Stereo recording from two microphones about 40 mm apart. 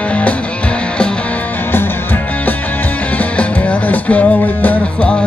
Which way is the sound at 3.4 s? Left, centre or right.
Left.